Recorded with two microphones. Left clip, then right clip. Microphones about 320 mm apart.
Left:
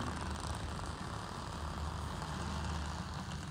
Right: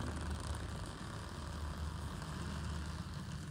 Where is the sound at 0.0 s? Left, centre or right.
Centre.